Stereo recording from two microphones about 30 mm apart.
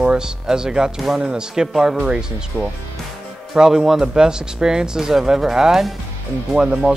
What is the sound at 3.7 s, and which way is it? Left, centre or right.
Speech, centre.